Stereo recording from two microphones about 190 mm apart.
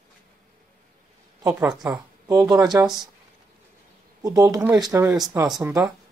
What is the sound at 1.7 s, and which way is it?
Speech, 20° right (ahead or behind).